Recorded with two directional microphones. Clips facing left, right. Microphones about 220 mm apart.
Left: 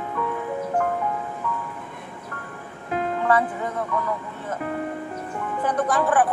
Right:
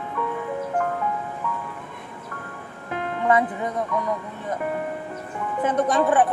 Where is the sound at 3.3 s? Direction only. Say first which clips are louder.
Right 3 dB; 15° right (ahead or behind).